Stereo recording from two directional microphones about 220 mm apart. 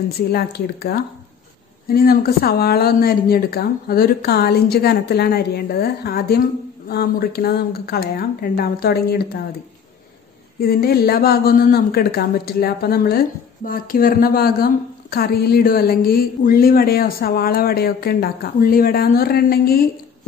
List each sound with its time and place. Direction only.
0.3 s speech: 45° left (ahead or behind)
10.6 s speech: 45° left (ahead or behind)